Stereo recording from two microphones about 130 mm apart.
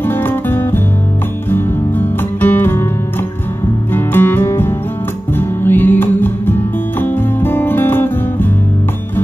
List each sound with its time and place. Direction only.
0.0 s music: 15° left (ahead or behind)
3.9 s music: 15° left (ahead or behind)